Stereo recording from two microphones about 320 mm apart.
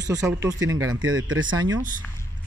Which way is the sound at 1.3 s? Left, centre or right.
Right.